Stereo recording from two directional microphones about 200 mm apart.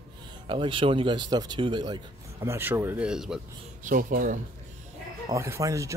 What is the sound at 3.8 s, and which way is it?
Speech, 40° right (ahead or behind).